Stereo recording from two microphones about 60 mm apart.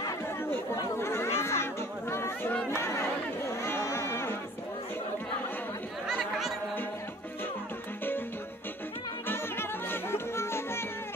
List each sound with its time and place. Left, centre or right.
0.5 s chatter: left
6.0 s chatter: centre
9.3 s music: left